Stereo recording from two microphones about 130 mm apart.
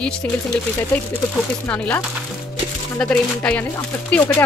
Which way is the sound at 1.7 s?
10° left (ahead or behind).